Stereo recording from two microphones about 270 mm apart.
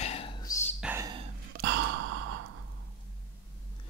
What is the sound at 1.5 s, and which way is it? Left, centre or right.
Gasp, right.